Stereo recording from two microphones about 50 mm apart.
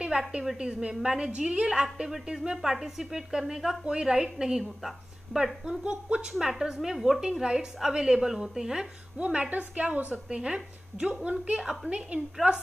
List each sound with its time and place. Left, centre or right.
0.0 s a woman's voice: centre
6.4 s speech: centre
9.2 s a woman's voice: right